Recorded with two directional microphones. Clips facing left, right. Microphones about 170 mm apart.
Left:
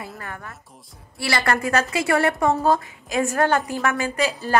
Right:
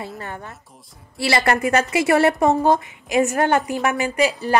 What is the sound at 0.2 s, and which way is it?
A woman's voice, 25° right (ahead or behind).